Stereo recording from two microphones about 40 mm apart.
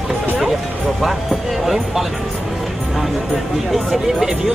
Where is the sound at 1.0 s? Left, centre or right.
Centre.